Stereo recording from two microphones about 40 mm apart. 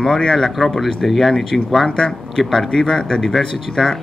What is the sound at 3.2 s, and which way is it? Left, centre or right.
Speech, centre.